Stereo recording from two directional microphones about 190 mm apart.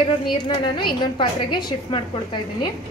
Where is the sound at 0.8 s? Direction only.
25° left (ahead or behind).